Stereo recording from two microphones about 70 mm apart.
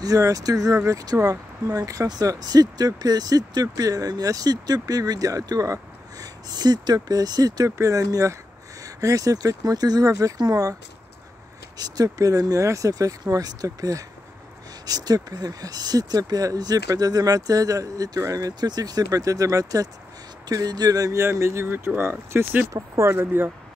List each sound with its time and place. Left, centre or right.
0.0 s speech: right
2.0 s speech: right
7.7 s speech: right
10.3 s speech: right
11.8 s speech: right
14.9 s speech: right
18.5 s speech: right
20.4 s speech: right
21.2 s speech: right
22.7 s speech: right
23.1 s speech: right